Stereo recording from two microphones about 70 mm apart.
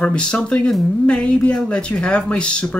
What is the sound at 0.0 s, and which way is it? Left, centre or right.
Speech, centre.